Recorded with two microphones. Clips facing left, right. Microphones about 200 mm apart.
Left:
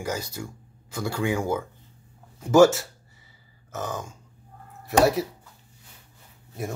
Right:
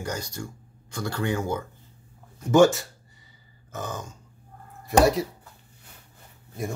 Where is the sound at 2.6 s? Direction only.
75° left (ahead or behind).